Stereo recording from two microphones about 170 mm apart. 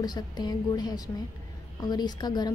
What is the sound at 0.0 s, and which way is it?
A woman's voice, 25° left (ahead or behind).